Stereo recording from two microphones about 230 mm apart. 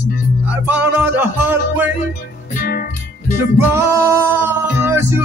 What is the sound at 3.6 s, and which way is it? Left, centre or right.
Music, centre.